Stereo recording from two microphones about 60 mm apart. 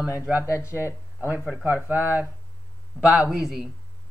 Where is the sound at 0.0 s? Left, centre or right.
Centre.